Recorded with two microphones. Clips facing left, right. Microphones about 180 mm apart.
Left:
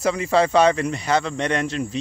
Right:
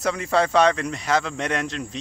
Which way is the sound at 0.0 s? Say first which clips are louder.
Left 3 dB; centre (ahead or behind).